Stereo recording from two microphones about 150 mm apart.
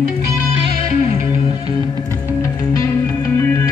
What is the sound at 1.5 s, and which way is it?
Music, 30° left (ahead or behind).